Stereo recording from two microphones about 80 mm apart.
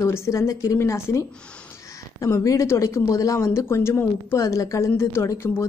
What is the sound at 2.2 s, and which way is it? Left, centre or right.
Speech, left.